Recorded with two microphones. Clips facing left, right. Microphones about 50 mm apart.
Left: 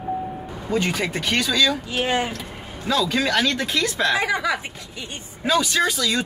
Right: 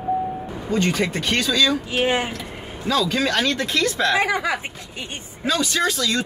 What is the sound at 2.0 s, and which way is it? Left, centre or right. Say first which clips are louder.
Speech: right 2 dB; right.